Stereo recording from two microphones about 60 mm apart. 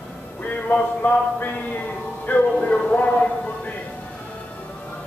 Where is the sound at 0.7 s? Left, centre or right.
Left.